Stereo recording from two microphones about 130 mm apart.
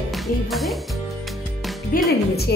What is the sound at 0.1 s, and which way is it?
Speech, centre (ahead or behind).